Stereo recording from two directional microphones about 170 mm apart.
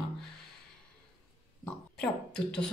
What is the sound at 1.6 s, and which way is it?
Speech, 5° left (ahead or behind).